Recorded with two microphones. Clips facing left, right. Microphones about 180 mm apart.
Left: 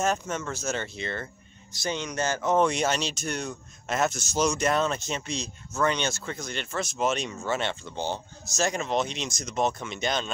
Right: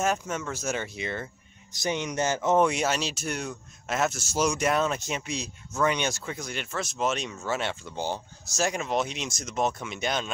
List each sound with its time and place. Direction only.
0.0 s speech: 10° right (ahead or behind)